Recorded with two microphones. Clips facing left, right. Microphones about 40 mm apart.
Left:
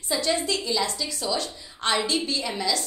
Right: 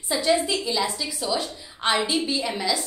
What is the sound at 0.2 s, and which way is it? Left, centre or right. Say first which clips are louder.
A woman's voice: right 6 dB; centre.